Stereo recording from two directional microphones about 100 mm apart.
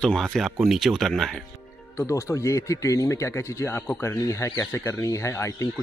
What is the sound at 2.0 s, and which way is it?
Speech, 30° left (ahead or behind).